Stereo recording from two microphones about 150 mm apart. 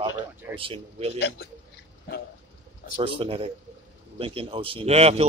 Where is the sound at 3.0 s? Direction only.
35° right (ahead or behind).